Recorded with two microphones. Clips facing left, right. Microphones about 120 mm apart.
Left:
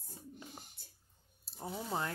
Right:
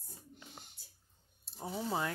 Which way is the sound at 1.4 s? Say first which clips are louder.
Right 3 dB; centre (ahead or behind).